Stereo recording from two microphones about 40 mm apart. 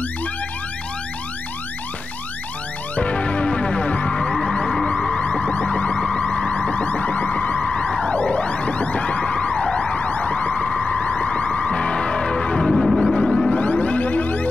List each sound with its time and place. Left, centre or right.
3.0 s music: left
5.2 s car alarm: left
6.1 s emergency vehicle: left
7.6 s emergency vehicle: left
12.6 s music: centre
13.5 s music: left